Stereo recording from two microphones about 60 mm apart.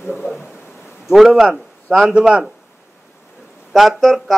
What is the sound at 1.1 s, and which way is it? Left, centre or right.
Speech, centre.